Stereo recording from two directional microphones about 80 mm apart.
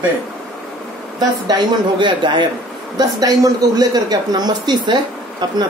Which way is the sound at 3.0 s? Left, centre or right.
Right.